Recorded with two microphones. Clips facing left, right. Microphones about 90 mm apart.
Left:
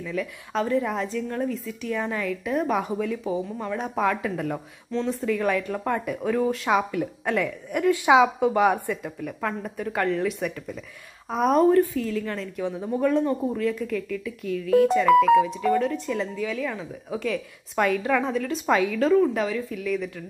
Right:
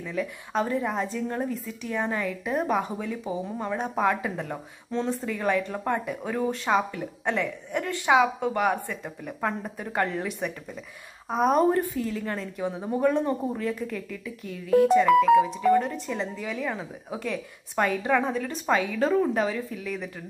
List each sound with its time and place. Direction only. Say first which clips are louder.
0.0 s a woman's voice: left 1 dB; 15° right (ahead or behind)
1.2 s speech: left 1 dB; 20° right (ahead or behind)
1.5 s a woman's voice: left 2 dB; 10° right (ahead or behind)
2.7 s a woman's voice: left 2 dB; centre (ahead or behind)
7.9 s speech: left 3 dB; 15° left (ahead or behind)
9.0 s a woman's voice: left 1 dB; 10° right (ahead or behind)
11.7 s a woman's voice: left 5 dB; 15° right (ahead or behind)
15.4 s a woman's voice: right 1 dB; 15° right (ahead or behind)